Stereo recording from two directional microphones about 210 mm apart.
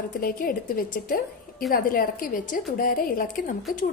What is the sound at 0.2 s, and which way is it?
A woman's voice, 45° left (ahead or behind).